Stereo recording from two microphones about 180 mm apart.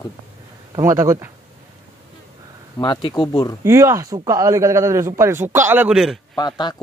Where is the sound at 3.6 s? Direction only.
15° right (ahead or behind).